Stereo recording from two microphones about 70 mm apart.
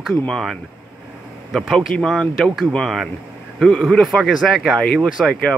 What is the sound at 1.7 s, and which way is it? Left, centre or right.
Speech, centre.